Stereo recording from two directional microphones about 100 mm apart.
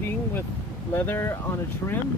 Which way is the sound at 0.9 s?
25° left (ahead or behind).